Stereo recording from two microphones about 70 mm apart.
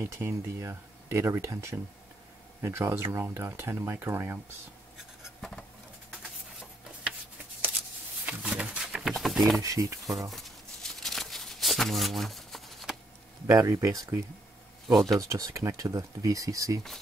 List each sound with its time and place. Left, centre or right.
0.0 s speech: right
5.4 s dishes: centre
8.3 s a sound: centre
9.1 s a sound: centre
9.6 s speech: right
10.3 s a sound: centre
13.5 s speech: right
14.9 s speech: centre
15.1 s speech: right